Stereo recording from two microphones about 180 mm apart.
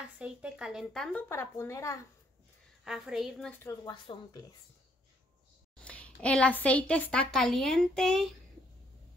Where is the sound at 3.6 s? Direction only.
25° left (ahead or behind).